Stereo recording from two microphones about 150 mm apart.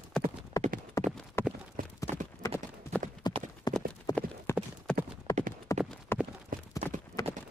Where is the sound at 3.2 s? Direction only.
30° left (ahead or behind).